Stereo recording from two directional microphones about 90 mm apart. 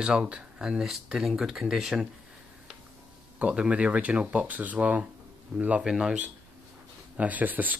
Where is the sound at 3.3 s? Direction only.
15° right (ahead or behind).